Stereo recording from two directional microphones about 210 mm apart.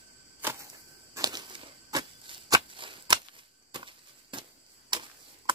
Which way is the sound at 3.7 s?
20° right (ahead or behind).